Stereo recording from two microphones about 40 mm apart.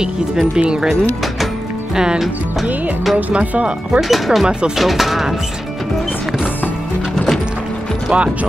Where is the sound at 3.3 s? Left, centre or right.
Right.